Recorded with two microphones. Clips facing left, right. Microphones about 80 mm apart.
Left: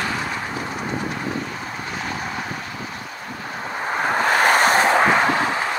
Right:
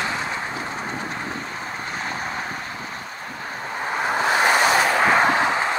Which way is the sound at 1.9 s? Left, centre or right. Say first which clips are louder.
Left 1 dB; right.